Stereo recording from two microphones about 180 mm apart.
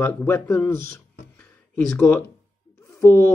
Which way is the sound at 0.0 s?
15° left (ahead or behind).